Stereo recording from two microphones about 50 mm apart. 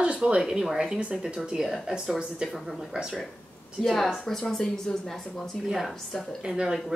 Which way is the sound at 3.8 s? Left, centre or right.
Centre.